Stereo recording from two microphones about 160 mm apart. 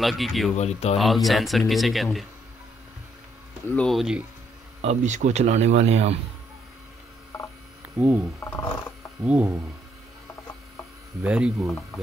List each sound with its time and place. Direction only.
0.0 s speech: centre (ahead or behind)
0.6 s speech: 45° left (ahead or behind)
0.9 s speech: centre (ahead or behind)
3.6 s speech: 5° left (ahead or behind)
4.8 s speech: 50° right (ahead or behind)
7.8 s speech: 10° right (ahead or behind)
11.2 s speech: 5° right (ahead or behind)